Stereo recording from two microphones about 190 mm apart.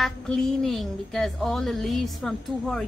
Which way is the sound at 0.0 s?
Centre (ahead or behind).